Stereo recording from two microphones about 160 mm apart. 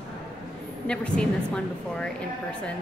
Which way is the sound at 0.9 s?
5° left (ahead or behind).